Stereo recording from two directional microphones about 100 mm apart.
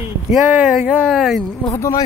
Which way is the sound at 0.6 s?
10° right (ahead or behind).